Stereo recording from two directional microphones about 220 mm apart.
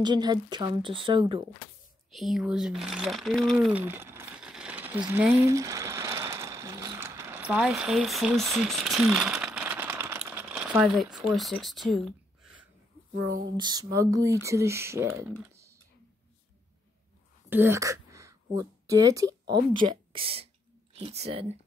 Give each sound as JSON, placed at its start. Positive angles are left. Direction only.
{"t": 0.0, "sound": "speech", "side_deg": -20}
{"t": 2.1, "sound": "speech", "side_deg": 0}
{"t": 13.6, "sound": "speech", "side_deg": -20}
{"t": 17.5, "sound": "speech", "side_deg": -10}